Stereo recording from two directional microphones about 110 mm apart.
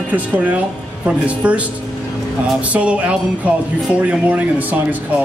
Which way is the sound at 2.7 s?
10° right (ahead or behind).